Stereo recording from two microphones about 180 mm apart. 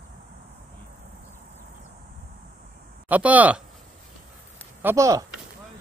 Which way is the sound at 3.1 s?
10° right (ahead or behind).